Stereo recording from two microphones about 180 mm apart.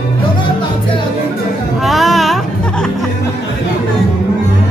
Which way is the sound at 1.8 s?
Centre (ahead or behind).